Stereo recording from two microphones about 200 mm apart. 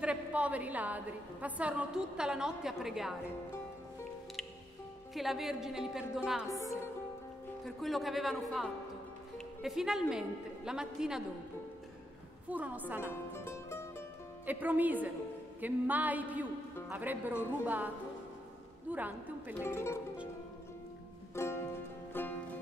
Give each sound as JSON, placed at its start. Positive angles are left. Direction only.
{"t": 0.0, "sound": "a woman's voice", "side_deg": -5}
{"t": 5.1, "sound": "a woman's voice", "side_deg": 0}
{"t": 6.4, "sound": "speech", "side_deg": 15}
{"t": 7.6, "sound": "a woman's voice", "side_deg": 0}
{"t": 12.4, "sound": "speech", "side_deg": -5}
{"t": 13.1, "sound": "music", "side_deg": 10}
{"t": 14.4, "sound": "speech", "side_deg": -10}
{"t": 19.6, "sound": "speech", "side_deg": 15}
{"t": 21.4, "sound": "music", "side_deg": 15}